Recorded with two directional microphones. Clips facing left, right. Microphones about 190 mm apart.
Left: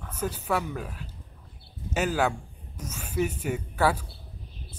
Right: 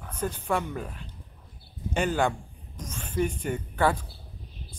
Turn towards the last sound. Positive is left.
turn(degrees=10)  # may be behind; listen again after turning